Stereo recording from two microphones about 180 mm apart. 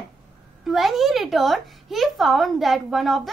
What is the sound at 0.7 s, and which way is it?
Speech, centre (ahead or behind).